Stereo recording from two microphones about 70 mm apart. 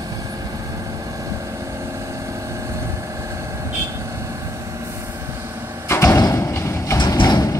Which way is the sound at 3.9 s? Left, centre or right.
Right.